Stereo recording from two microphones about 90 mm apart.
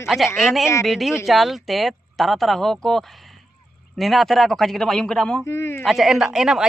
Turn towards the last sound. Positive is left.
turn(degrees=-5)  # may be behind; listen again after turning